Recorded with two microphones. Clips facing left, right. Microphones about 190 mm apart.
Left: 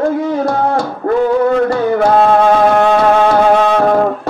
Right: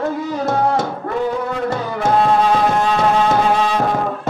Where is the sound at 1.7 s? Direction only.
65° left (ahead or behind).